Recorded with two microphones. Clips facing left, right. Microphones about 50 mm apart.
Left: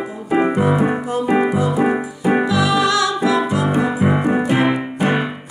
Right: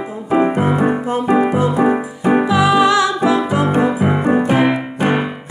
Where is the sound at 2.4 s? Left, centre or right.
Centre.